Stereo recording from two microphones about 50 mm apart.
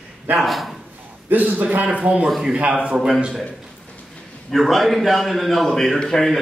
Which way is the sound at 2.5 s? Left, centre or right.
Right.